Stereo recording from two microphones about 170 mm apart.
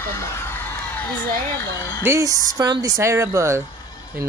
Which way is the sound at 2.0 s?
15° right (ahead or behind).